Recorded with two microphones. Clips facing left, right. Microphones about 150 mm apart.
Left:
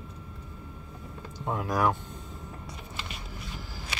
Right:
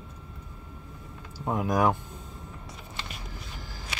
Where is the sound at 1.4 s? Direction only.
15° right (ahead or behind).